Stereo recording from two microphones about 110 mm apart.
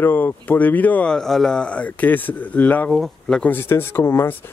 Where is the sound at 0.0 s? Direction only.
20° left (ahead or behind).